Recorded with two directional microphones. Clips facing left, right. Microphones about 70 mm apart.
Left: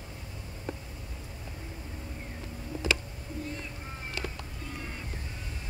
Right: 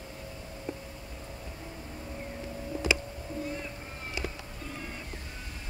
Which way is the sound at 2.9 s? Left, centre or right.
Centre.